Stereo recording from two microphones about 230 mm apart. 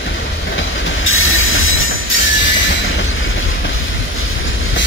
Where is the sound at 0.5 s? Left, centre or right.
Left.